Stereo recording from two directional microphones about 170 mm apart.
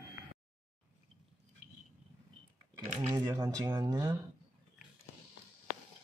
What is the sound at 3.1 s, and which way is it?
Speech, 20° right (ahead or behind).